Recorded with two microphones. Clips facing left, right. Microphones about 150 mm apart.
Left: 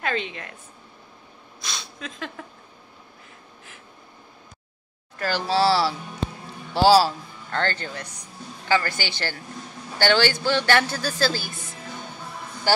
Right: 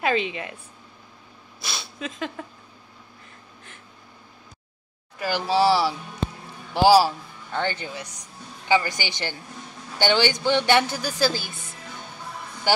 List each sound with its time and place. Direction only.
0.0 s speech: 5° right (ahead or behind)
1.6 s a sound: 5° right (ahead or behind)
5.2 s a man's voice: 15° right (ahead or behind)
12.7 s speech: 15° right (ahead or behind)